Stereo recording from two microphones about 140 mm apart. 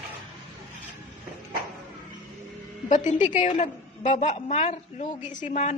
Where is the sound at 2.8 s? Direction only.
60° left (ahead or behind).